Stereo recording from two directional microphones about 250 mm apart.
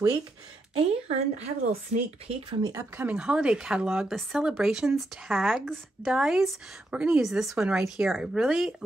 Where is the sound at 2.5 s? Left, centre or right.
Centre.